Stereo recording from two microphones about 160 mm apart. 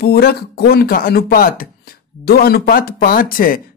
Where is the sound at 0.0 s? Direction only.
75° left (ahead or behind).